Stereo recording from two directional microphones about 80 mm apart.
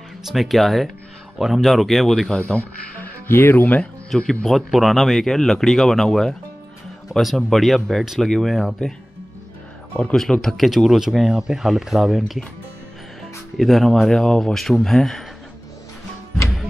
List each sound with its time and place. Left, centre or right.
0.2 s speech: centre
3.0 s speech: left
4.1 s speech: centre
10.1 s speech: centre